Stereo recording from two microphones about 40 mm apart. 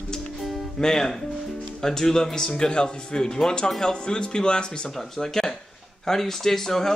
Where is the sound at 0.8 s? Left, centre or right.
Centre.